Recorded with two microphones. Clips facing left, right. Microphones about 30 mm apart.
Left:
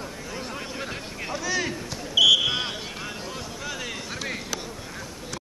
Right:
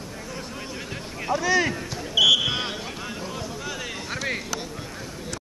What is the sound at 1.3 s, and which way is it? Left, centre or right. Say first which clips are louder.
Speech: right 6 dB; centre.